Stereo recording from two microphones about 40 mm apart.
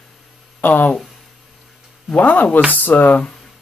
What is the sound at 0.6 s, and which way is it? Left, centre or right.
Speech, left.